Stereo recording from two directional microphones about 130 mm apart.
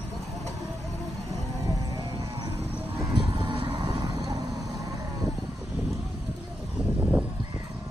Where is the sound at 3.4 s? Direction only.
40° right (ahead or behind).